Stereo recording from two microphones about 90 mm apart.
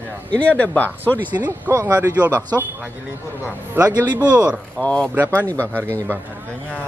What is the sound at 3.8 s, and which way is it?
Speech, 20° right (ahead or behind).